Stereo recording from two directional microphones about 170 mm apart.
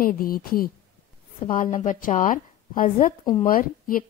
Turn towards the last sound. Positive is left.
turn(degrees=55)  # may be behind; listen again after turning